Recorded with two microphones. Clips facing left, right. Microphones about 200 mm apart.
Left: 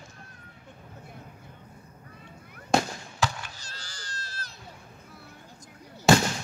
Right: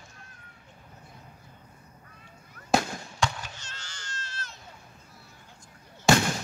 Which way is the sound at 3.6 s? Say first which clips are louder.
Left 1 dB; 35° left (ahead or behind).